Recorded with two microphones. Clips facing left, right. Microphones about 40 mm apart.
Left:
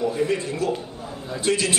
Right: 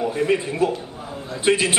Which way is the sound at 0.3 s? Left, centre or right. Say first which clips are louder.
Right 4 dB; right.